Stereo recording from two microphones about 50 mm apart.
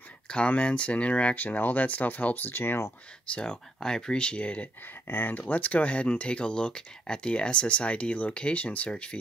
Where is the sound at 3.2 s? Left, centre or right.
Left.